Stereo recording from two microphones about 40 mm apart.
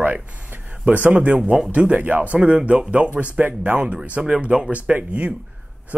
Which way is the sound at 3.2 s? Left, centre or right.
Right.